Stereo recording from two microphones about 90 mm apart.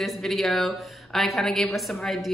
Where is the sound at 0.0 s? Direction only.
Centre (ahead or behind).